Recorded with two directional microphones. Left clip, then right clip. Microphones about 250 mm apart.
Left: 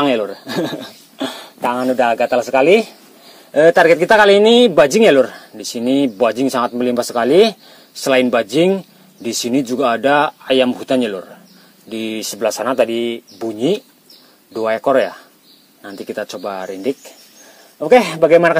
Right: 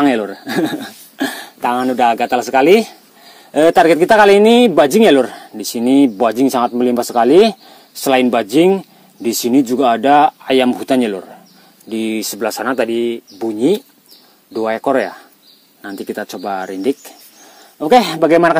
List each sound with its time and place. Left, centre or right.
0.0 s speech: right